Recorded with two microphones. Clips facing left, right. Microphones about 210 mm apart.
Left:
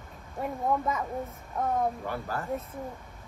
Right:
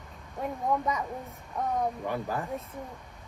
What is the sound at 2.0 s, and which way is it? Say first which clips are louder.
Speech: right 2 dB; 15° right (ahead or behind).